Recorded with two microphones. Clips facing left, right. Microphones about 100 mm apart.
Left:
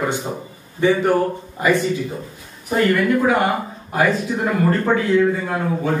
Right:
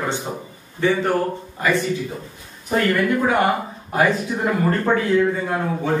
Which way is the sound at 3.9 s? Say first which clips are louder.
Left 1 dB; centre (ahead or behind).